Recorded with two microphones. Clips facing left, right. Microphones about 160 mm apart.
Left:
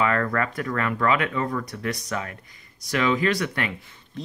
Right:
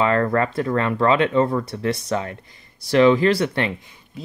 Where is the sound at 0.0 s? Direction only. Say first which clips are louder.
Right 5 dB; 30° right (ahead or behind).